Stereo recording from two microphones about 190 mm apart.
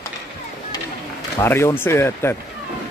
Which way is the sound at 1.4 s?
10° left (ahead or behind).